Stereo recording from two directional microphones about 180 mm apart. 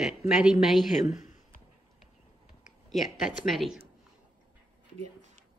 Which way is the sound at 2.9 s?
Centre (ahead or behind).